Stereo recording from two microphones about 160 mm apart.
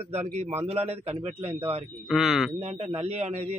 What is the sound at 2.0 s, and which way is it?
Speech, centre (ahead or behind).